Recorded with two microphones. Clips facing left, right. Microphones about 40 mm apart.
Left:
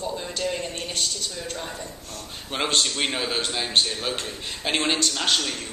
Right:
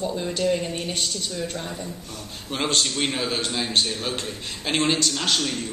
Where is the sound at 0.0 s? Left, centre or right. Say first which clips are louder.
Right 4 dB; centre.